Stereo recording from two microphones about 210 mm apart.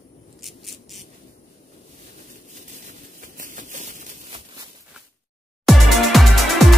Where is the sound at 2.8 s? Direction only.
40° right (ahead or behind).